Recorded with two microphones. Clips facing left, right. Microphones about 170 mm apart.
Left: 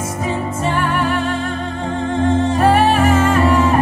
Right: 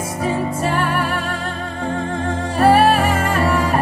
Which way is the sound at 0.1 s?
30° right (ahead or behind).